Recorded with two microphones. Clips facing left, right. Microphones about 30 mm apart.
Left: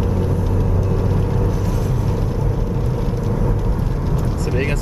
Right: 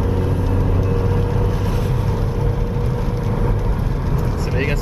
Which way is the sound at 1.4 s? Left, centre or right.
Right.